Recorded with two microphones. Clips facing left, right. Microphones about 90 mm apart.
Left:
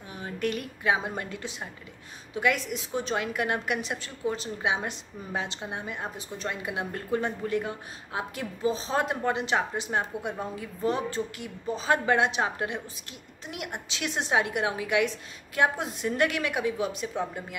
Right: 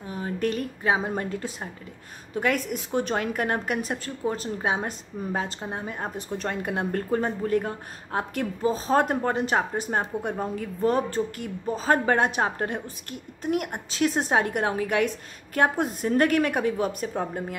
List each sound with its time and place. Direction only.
0.1 s a woman's voice: 35° right (ahead or behind)
6.1 s a woman's voice: 55° right (ahead or behind)